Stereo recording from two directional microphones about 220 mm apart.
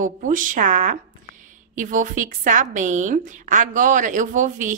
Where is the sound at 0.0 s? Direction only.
35° right (ahead or behind).